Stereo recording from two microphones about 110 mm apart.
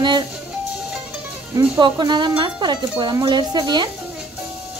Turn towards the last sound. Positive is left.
turn(degrees=-40)  # may be behind; listen again after turning